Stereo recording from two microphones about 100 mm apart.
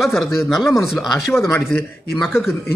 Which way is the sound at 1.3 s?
25° left (ahead or behind).